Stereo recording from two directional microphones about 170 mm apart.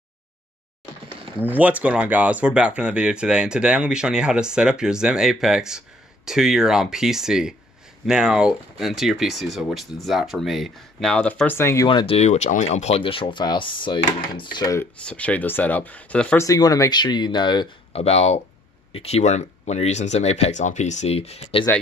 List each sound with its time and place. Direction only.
1.4 s speech: 10° right (ahead or behind); by 11.9 s 15° left (ahead or behind)
11.9 s speech: 30° left (ahead or behind)
15.0 s speech: 5° left (ahead or behind)
16.4 s speech: 20° left (ahead or behind)